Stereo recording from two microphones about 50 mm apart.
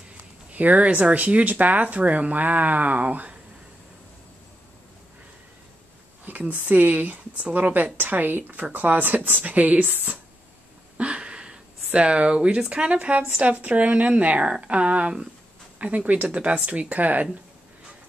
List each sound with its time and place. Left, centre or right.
0.2 s speech: right
6.5 s speech: right
11.0 s speech: right